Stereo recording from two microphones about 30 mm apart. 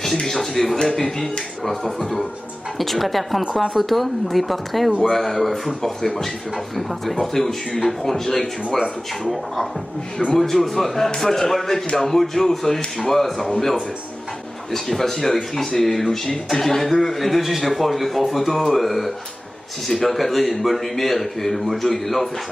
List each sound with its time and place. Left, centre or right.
0.0 s a man's voice: centre
1.6 s a man's voice: centre
10.3 s a man's voice: centre
14.7 s a man's voice: centre